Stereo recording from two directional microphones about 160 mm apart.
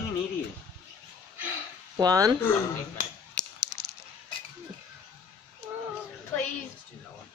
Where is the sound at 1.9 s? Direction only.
25° right (ahead or behind).